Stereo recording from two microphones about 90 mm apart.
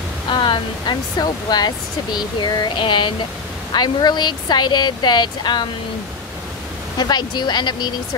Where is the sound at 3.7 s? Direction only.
50° left (ahead or behind).